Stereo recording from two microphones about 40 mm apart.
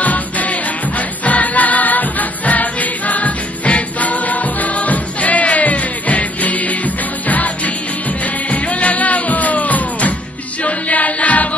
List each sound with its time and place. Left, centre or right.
0.0 s music: left